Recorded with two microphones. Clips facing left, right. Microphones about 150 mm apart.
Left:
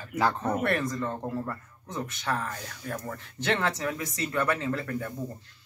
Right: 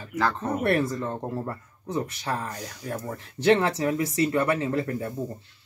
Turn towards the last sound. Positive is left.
turn(degrees=-30)  # may be behind; listen again after turning